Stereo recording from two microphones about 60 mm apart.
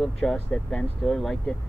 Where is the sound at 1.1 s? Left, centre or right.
Centre.